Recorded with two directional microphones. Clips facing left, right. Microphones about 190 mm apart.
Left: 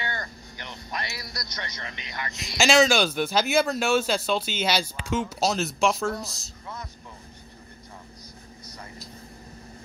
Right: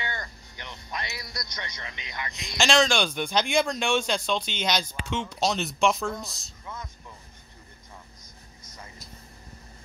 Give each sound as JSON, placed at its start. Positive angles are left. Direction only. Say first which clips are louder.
{"t": 0.0, "sound": "a sound", "louder": "left 2 dB", "side_deg": -20}
{"t": 0.9, "sound": "a man's voice", "louder": "left 1 dB", "side_deg": -20}
{"t": 2.3, "sound": "speech", "louder": "left 3 dB", "side_deg": 5}